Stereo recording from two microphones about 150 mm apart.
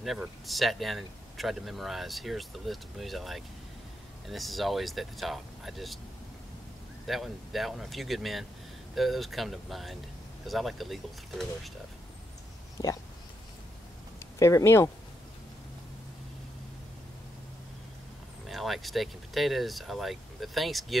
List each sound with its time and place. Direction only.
0.0 s speech: centre (ahead or behind)
7.1 s speech: centre (ahead or behind)
14.4 s speech: 20° left (ahead or behind)
18.5 s speech: centre (ahead or behind)